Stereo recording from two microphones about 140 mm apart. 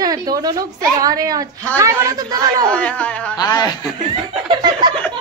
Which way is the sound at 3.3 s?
30° left (ahead or behind).